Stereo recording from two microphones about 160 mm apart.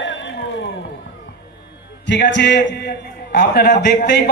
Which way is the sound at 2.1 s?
90° left.